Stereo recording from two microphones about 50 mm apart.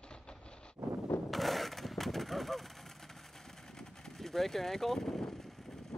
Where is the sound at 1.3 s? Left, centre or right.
Centre.